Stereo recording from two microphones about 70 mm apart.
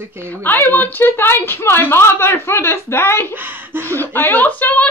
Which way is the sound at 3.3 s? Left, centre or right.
Right.